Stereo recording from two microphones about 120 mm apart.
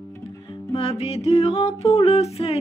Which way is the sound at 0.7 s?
55° left (ahead or behind).